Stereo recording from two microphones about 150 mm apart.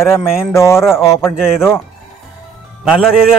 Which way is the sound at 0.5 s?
20° left (ahead or behind).